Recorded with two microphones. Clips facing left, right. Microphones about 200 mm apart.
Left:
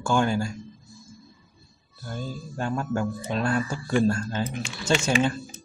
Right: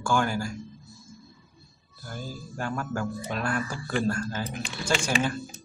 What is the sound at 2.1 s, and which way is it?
Speech, 25° left (ahead or behind).